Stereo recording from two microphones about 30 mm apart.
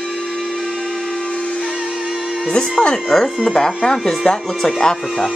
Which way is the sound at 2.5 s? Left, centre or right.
Left.